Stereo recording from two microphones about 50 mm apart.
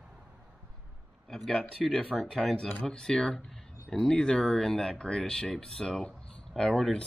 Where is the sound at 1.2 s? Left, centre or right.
Centre.